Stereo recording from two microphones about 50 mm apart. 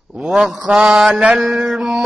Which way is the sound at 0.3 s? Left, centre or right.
Centre.